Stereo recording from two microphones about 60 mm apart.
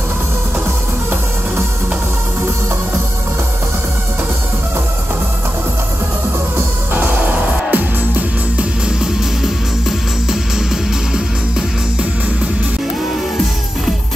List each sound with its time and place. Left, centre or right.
6.9 s music: right
8.8 s music: centre